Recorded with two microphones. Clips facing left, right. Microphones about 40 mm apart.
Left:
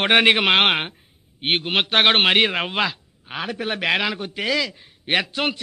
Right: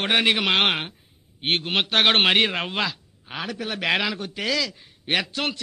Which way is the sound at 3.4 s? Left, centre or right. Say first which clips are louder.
Left 4 dB; left.